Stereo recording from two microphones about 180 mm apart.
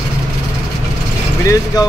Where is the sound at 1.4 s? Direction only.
15° left (ahead or behind).